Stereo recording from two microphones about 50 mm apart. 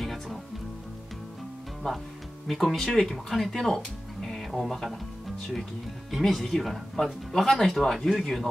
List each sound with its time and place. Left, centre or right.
0.0 s music: centre
1.8 s speech: centre
2.4 s speech: centre
6.1 s speech: centre